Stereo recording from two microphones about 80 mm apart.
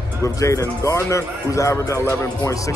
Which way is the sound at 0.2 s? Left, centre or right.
Left.